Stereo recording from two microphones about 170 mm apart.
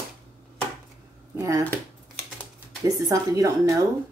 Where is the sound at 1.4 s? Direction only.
20° right (ahead or behind).